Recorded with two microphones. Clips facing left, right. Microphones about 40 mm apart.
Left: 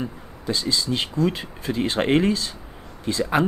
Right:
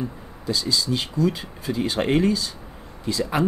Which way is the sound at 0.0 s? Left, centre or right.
Left.